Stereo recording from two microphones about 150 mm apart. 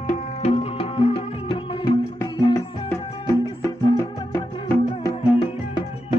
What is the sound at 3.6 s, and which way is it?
Music, 25° left (ahead or behind).